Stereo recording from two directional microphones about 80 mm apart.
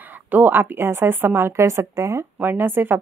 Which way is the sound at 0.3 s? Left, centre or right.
Right.